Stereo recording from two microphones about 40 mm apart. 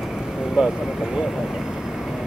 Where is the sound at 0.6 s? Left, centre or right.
Centre.